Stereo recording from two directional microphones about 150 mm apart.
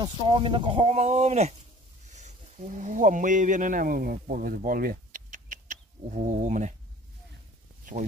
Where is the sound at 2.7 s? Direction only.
55° right (ahead or behind).